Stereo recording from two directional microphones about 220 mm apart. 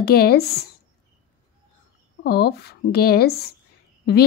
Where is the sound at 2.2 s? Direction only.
45° left (ahead or behind).